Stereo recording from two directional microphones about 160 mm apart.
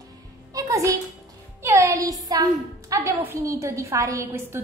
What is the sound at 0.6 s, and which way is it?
Music, 20° right (ahead or behind).